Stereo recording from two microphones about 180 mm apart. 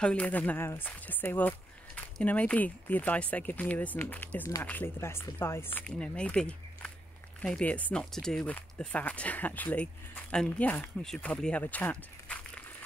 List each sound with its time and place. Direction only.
0.0 s speech: 5° left (ahead or behind)